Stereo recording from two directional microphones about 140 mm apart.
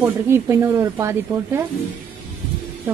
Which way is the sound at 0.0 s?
20° right (ahead or behind).